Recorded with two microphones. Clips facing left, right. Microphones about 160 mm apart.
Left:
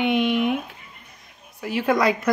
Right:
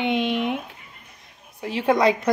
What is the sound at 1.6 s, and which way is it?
Speech, 25° right (ahead or behind).